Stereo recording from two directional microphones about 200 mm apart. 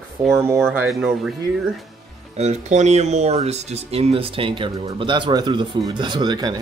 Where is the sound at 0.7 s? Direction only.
5° right (ahead or behind).